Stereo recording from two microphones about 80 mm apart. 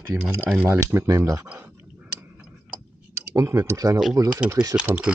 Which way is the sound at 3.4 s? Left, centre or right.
Right.